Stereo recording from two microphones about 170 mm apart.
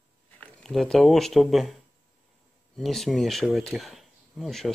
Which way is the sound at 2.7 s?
Centre (ahead or behind).